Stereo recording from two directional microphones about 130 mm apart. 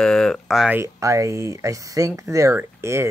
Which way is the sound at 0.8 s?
25° right (ahead or behind).